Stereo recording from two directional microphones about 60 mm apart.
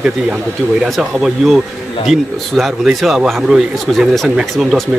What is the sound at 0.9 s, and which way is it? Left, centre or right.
A man's voice, centre.